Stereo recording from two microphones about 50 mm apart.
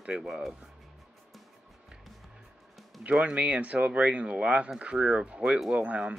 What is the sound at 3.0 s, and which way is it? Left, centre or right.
Speech, right.